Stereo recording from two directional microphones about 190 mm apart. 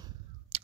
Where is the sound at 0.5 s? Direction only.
30° right (ahead or behind).